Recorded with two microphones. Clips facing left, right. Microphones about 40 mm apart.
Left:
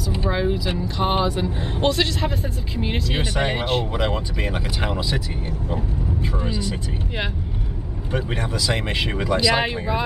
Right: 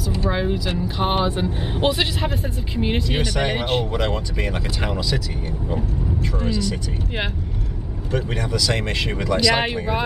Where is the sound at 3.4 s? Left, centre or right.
Centre.